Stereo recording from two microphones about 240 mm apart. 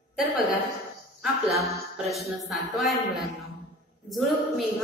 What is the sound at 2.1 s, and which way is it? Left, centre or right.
A man's voice, centre.